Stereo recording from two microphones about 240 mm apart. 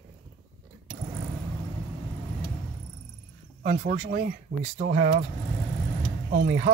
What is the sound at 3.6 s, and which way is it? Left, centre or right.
Speech, right.